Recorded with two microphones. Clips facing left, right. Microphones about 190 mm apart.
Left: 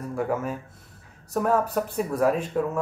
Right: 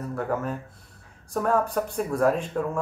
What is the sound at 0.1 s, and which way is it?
Speech, 10° left (ahead or behind).